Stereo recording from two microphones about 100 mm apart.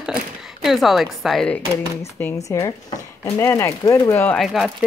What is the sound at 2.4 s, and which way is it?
Speech, 30° left (ahead or behind).